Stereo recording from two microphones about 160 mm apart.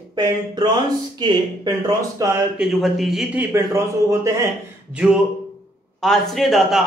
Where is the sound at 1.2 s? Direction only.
25° right (ahead or behind).